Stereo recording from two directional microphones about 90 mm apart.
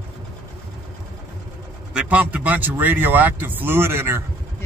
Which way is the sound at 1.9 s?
20° right (ahead or behind).